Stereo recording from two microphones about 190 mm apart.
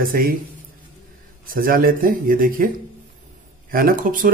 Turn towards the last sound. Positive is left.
turn(degrees=-45)  # may be behind; listen again after turning